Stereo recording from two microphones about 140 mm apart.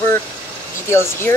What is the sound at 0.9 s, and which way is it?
Speech, 20° left (ahead or behind).